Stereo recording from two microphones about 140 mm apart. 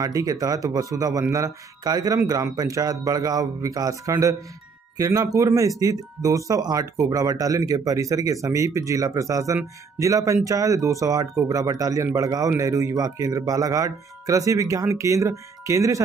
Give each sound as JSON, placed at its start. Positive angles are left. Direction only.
{"t": 0.0, "sound": "speech", "side_deg": -25}